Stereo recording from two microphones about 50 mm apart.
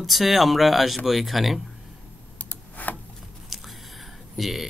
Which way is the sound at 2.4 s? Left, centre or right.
Left.